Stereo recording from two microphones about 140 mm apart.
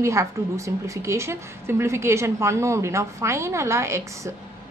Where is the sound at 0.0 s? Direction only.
20° right (ahead or behind).